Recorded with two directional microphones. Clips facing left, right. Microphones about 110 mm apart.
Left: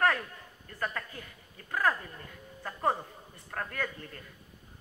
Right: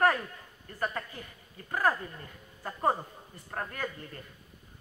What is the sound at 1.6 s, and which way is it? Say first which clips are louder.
A woman's voice: right 1 dB; 20° right (ahead or behind).